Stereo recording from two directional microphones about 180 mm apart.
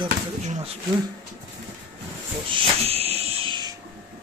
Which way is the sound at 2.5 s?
35° right (ahead or behind).